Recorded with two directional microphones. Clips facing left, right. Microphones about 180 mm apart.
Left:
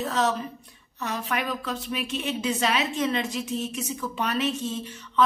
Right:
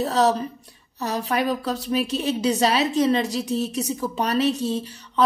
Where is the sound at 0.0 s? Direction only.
35° right (ahead or behind).